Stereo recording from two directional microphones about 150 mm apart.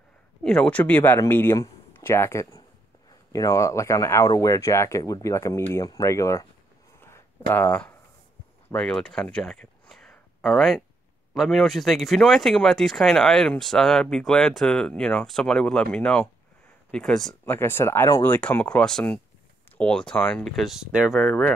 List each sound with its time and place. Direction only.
0.4 s speech: 5° left (ahead or behind)
7.0 s a sound: 15° left (ahead or behind)
8.7 s speech: 5° left (ahead or behind)
17.5 s speech: 15° left (ahead or behind)